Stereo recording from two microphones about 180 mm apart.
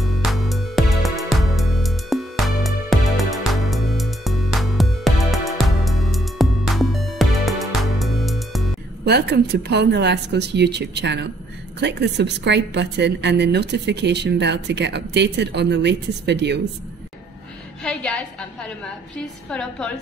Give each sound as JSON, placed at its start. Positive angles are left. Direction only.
{"t": 0.0, "sound": "music", "side_deg": 0}
{"t": 9.0, "sound": "a woman's voice", "side_deg": -65}
{"t": 17.8, "sound": "a woman's voice", "side_deg": 5}